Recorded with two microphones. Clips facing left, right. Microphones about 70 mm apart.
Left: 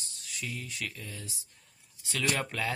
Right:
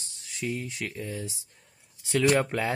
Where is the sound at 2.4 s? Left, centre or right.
Right.